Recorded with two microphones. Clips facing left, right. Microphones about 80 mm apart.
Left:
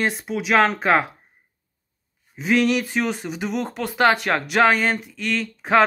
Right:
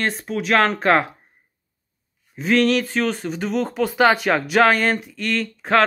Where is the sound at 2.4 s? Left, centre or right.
Centre.